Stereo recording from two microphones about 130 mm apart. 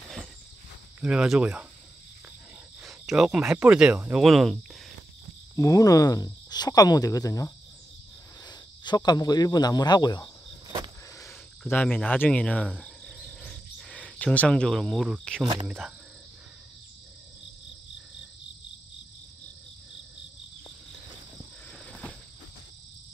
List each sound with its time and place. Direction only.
1.0 s speech: 5° right (ahead or behind)
2.8 s speech: 5° right (ahead or behind)
5.6 s speech: 25° left (ahead or behind)
11.7 s cricket: 10° left (ahead or behind)
21.7 s cricket: 10° left (ahead or behind)